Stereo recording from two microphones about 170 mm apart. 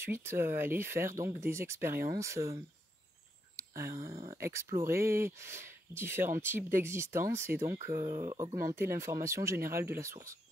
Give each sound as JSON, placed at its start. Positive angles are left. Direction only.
{"t": 0.0, "sound": "speech", "side_deg": -15}
{"t": 3.5, "sound": "a sound", "side_deg": -20}
{"t": 4.3, "sound": "speech", "side_deg": -15}